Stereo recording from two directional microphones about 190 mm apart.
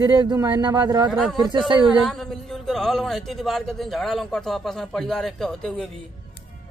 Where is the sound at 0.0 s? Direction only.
20° right (ahead or behind).